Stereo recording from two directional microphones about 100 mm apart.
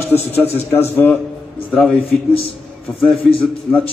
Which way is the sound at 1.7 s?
Centre (ahead or behind).